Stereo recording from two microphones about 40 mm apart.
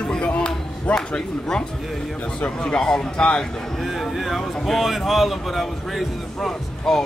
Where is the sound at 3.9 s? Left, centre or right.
Centre.